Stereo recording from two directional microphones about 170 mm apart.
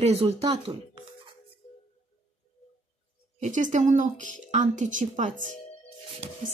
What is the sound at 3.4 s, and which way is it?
Speech, 45° right (ahead or behind).